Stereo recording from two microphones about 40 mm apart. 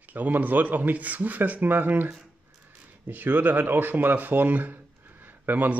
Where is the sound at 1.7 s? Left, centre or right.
Right.